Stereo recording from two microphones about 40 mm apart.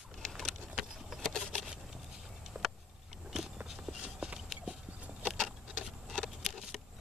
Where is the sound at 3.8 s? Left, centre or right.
Right.